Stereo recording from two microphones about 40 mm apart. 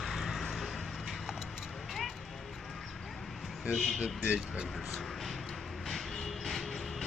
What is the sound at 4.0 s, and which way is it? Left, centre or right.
Speech, right.